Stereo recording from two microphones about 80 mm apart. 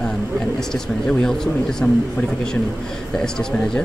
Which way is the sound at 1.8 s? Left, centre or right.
Left.